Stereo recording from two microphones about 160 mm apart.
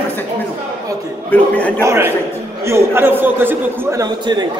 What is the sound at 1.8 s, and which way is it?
A man's voice, 15° right (ahead or behind).